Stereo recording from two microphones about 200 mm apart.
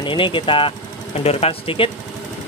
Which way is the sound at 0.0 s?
25° left (ahead or behind).